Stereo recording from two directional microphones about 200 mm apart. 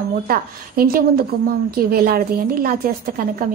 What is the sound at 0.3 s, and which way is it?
A woman's voice, 50° right (ahead or behind).